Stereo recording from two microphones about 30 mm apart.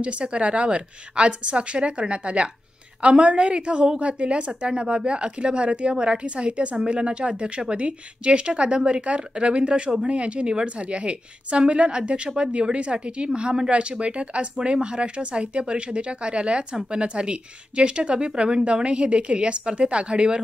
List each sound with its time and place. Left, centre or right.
0.0 s a woman's voice: right